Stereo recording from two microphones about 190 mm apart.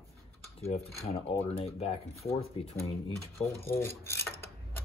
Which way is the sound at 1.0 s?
30° left (ahead or behind).